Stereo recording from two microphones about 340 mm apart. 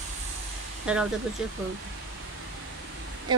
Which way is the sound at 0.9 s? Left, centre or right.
Centre.